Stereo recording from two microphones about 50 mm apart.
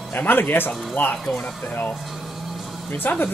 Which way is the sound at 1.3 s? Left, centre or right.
Left.